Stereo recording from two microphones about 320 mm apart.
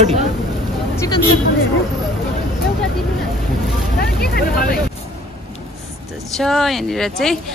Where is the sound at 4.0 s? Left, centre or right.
Left.